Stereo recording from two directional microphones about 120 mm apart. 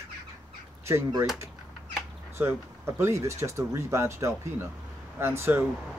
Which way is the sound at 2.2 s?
20° right (ahead or behind).